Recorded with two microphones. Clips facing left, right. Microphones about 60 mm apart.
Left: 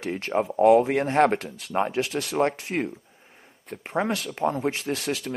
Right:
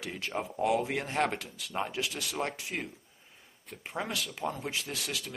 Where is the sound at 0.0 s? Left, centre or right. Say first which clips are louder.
Left 10 dB; left.